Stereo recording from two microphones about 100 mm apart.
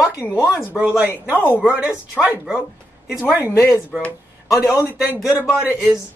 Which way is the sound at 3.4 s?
30° left (ahead or behind).